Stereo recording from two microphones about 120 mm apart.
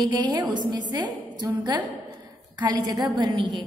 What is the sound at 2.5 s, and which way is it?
A woman's voice, 35° right (ahead or behind).